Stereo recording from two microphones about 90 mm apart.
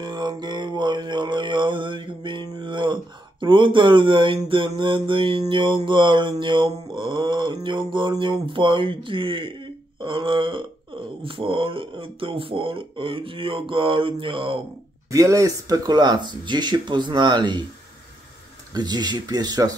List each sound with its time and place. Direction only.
0.0 s mantra: 55° right (ahead or behind)
8.2 s speech: 65° right (ahead or behind)
15.0 s speech: 35° right (ahead or behind); by 17.6 s 55° right (ahead or behind)
18.7 s speech: 50° right (ahead or behind)